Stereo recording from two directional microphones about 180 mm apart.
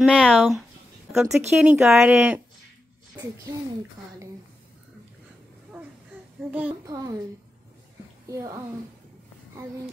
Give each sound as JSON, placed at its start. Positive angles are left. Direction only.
{"t": 0.0, "sound": "speech", "side_deg": 0}
{"t": 6.5, "sound": "a woman's voice", "side_deg": -10}
{"t": 6.9, "sound": "a woman's voice", "side_deg": -20}
{"t": 8.3, "sound": "a woman's voice", "side_deg": -20}